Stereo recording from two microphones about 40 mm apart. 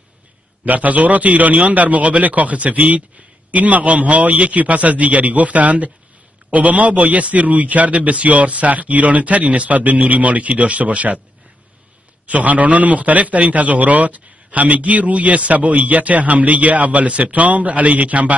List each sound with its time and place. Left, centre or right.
0.7 s a man's voice: right
12.3 s a man's voice: right